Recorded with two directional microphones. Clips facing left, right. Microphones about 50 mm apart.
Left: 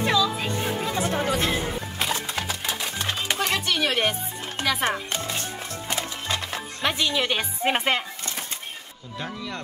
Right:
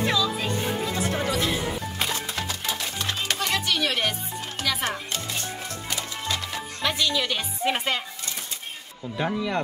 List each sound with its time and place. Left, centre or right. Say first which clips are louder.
0.9 s music: left 2 dB; left
2.0 s music: left 4 dB; centre
2.3 s typewriter: left 1 dB; centre
3.3 s music: left 1 dB; left
6.8 s a woman's voice: left 1 dB; left
9.2 s speech: right 7 dB; centre